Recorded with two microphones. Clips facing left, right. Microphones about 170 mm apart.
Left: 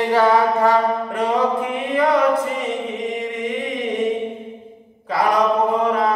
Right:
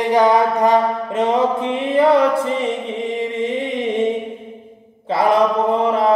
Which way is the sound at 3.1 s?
30° right (ahead or behind).